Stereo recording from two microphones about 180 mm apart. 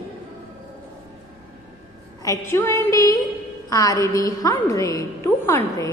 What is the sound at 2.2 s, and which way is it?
A woman's voice, 15° left (ahead or behind).